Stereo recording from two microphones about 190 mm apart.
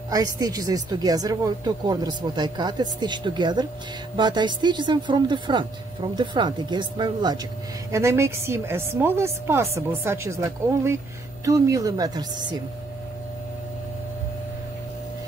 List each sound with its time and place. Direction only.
0.1 s speech: 20° right (ahead or behind)